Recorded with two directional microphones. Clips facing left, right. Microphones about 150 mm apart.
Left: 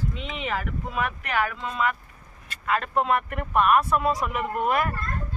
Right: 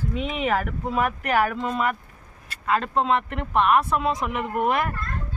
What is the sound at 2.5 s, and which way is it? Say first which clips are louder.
Speech: right 2 dB; 30° right (ahead or behind).